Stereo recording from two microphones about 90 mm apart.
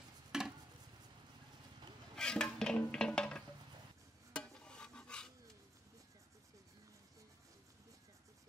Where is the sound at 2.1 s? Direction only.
10° left (ahead or behind).